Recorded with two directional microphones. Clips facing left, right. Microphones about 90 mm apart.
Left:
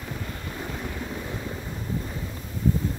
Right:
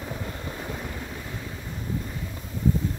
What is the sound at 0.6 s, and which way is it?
Waves, 5° right (ahead or behind).